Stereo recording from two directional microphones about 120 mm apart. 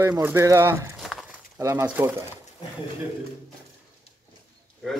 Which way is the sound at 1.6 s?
25° right (ahead or behind).